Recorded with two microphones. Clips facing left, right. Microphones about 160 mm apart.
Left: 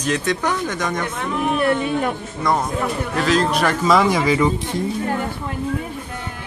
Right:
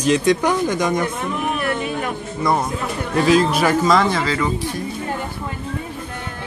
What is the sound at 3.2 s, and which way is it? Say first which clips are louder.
Speech: right 3 dB; 10° right (ahead or behind).